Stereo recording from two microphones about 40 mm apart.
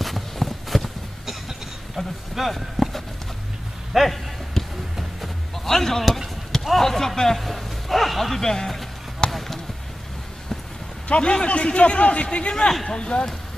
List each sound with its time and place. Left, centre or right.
0.0 s a sound: centre
2.0 s speech: centre
3.9 s a sound: centre
6.0 s speech: centre
9.2 s basketball bounce: left
11.1 s a man's voice: left